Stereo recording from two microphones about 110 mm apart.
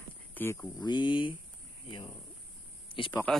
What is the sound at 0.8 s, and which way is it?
Speech, 45° left (ahead or behind).